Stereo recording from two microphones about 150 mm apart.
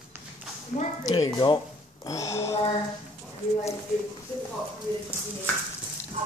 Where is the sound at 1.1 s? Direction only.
25° left (ahead or behind).